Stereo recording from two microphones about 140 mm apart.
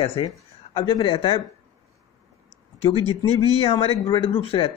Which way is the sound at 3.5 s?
45° left (ahead or behind).